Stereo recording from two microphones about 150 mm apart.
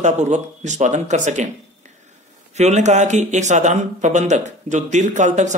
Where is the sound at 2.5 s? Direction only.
50° right (ahead or behind).